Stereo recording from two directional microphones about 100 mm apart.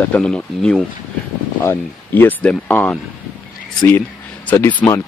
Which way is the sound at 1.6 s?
20° left (ahead or behind).